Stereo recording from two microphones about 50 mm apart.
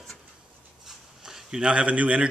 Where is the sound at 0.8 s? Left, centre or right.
Centre.